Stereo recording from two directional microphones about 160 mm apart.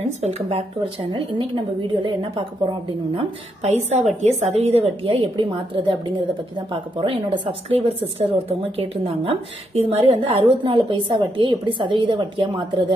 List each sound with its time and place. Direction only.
0.2 s a woman's voice: 40° right (ahead or behind)
3.2 s a woman's voice: 40° right (ahead or behind)